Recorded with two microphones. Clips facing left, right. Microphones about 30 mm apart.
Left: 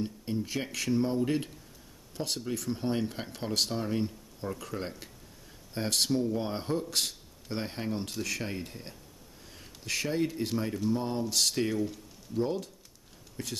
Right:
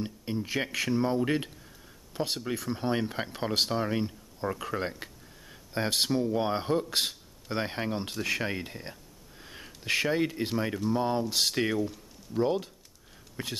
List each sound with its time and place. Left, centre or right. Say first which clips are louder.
0.0 s speech: even; right
9.4 s a sound: right 4 dB; right
10.9 s speech: right 4 dB; right